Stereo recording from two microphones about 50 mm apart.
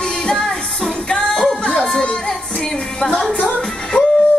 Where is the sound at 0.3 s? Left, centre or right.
Centre.